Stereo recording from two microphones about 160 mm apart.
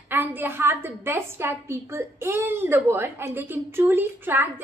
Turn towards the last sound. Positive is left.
turn(degrees=-15)  # may be behind; listen again after turning